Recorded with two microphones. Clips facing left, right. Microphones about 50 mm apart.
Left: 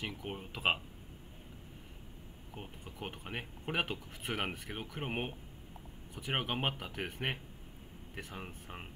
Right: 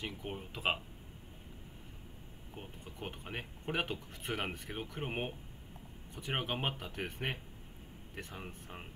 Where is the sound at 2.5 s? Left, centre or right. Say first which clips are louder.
Left 1 dB; centre.